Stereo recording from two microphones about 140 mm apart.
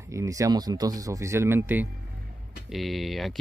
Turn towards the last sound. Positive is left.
turn(degrees=0)  # may be behind; listen again after turning